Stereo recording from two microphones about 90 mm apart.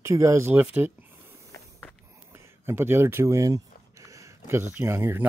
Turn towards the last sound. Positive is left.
turn(degrees=-25)  # may be behind; listen again after turning